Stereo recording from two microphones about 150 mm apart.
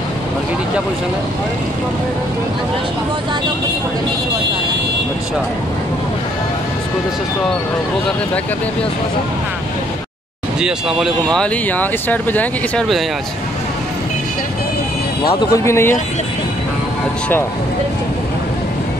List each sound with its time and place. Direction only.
10.6 s speech: 5° right (ahead or behind)
15.5 s speech: 20° left (ahead or behind)